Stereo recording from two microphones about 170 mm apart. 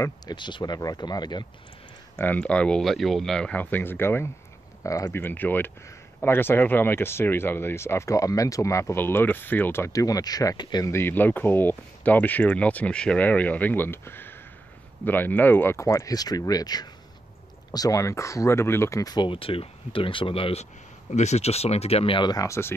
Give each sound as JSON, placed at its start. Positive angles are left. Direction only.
{"t": 0.0, "sound": "speech", "side_deg": 25}
{"t": 2.1, "sound": "speech", "side_deg": 10}